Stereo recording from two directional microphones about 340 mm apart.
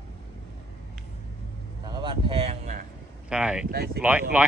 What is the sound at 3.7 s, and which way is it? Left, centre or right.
Speech, right.